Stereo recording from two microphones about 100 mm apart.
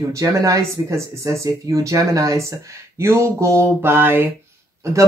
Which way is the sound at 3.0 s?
30° right (ahead or behind).